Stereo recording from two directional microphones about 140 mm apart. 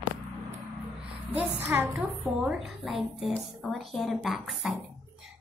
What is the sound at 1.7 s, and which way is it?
Speech, 15° right (ahead or behind).